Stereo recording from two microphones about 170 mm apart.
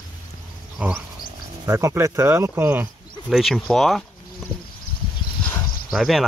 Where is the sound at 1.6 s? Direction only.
15° right (ahead or behind).